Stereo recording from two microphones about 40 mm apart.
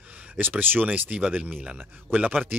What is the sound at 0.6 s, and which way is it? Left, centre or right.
Speech, right.